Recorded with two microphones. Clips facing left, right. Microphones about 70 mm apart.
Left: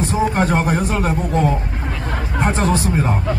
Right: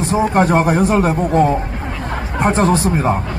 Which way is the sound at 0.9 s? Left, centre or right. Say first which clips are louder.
Right 5 dB; right.